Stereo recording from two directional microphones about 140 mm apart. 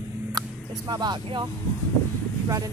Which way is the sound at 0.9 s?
30° right (ahead or behind).